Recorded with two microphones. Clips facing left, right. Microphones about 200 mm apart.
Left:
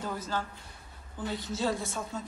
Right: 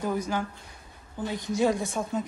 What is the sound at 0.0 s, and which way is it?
Speech, 15° right (ahead or behind).